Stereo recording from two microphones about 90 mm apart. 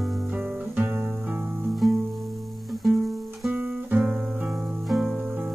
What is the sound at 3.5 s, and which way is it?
Guitar, 15° right (ahead or behind).